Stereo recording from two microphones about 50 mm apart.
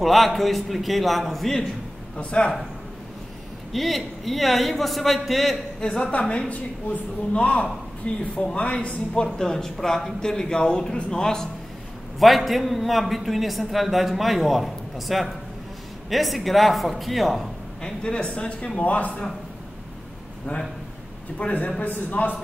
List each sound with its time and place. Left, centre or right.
0.0 s a man's voice: centre
2.1 s a man's voice: left
3.7 s a man's voice: centre
5.8 s a woman's voice: centre
9.4 s a man's voice: centre
12.2 s a man's voice: centre
17.8 s a man's voice: centre
21.4 s a man's voice: left
21.8 s a man's voice: left